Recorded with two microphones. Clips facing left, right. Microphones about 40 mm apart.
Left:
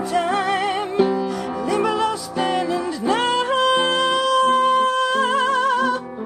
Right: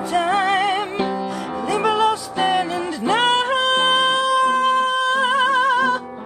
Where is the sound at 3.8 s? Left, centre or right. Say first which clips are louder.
Right 2 dB; centre.